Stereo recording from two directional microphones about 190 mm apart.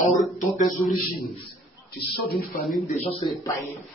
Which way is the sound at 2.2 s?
55° left (ahead or behind).